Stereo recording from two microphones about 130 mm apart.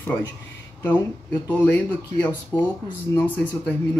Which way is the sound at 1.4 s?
15° left (ahead or behind).